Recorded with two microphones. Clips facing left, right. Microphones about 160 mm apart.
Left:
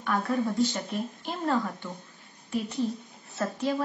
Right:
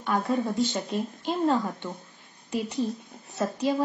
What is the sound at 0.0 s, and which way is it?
Speech, 20° right (ahead or behind).